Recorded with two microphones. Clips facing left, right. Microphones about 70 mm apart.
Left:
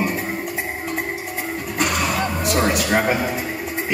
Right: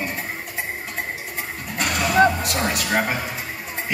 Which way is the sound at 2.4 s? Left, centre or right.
Centre.